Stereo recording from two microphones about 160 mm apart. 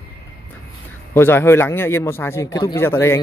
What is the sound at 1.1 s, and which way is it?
Speech, 15° left (ahead or behind).